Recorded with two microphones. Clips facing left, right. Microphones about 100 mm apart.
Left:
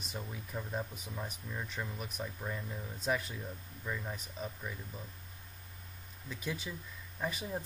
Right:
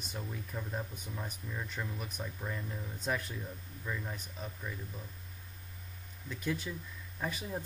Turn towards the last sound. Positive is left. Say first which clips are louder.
# even
turn(degrees=0)  # may be behind; listen again after turning